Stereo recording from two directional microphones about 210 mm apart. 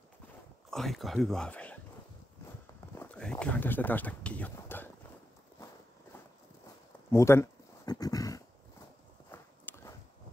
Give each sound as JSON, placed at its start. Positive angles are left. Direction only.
{"t": 0.7, "sound": "speech", "side_deg": 0}
{"t": 2.9, "sound": "speech", "side_deg": 10}
{"t": 7.1, "sound": "a sound", "side_deg": 10}
{"t": 9.3, "sound": "walk", "side_deg": 10}